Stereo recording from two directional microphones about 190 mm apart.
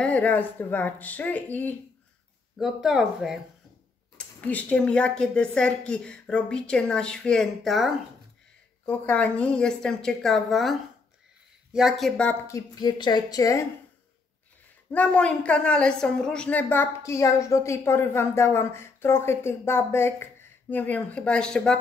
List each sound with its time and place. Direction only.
0.0 s a woman's voice: 5° left (ahead or behind)
2.5 s speech: centre (ahead or behind)
4.4 s a woman's voice: 5° left (ahead or behind)
14.9 s a woman's voice: 5° left (ahead or behind)